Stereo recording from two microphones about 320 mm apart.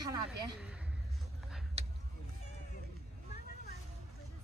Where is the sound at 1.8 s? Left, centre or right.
Centre.